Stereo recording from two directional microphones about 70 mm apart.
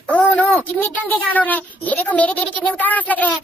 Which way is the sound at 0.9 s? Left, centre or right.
Left.